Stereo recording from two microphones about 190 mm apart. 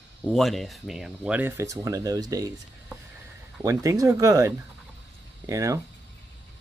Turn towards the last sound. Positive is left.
turn(degrees=-15)  # may be behind; listen again after turning